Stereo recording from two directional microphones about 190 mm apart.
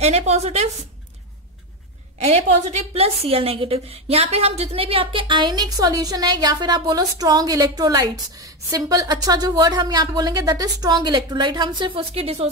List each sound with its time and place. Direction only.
0.0 s a woman's voice: 35° right (ahead or behind)
2.1 s a woman's voice: 35° right (ahead or behind)